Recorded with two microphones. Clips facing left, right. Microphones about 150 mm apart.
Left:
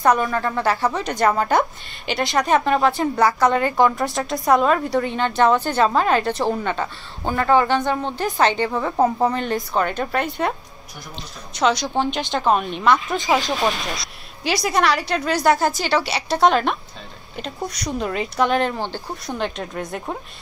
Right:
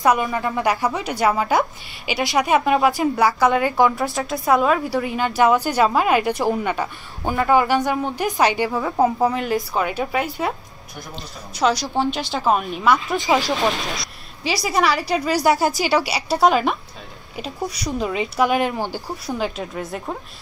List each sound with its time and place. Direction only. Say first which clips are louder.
0.2 s a woman's voice: even; 15° right (ahead or behind)
11.5 s speech: even; 5° right (ahead or behind)